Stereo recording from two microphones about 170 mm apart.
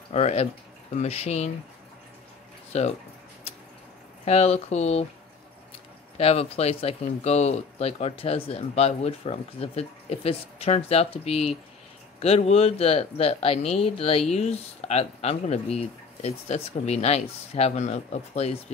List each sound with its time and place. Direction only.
0.1 s speech: 40° left (ahead or behind)
2.7 s speech: 40° left (ahead or behind)
4.2 s speech: 40° left (ahead or behind)
6.1 s speech: 35° left (ahead or behind)